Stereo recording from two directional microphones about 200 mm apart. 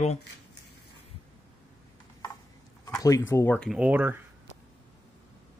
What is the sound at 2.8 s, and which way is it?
Speech, 15° left (ahead or behind).